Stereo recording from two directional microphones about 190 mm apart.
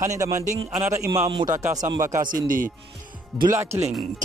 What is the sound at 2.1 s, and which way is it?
Speech, 45° right (ahead or behind).